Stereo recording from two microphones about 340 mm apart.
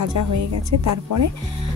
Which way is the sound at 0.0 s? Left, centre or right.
Right.